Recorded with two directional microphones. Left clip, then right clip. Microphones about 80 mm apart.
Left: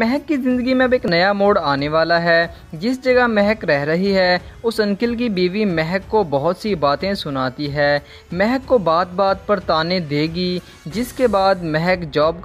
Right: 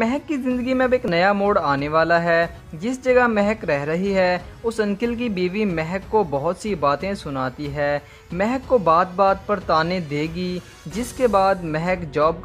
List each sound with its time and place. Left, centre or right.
0.0 s speech: left
5.5 s speech: left
5.8 s speech: left